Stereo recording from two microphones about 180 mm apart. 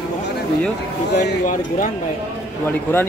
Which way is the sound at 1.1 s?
45° left (ahead or behind).